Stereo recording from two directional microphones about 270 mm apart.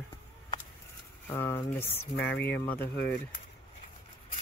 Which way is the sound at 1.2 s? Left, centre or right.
Centre.